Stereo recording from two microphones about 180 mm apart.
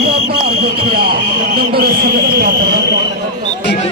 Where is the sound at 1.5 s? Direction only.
60° right (ahead or behind).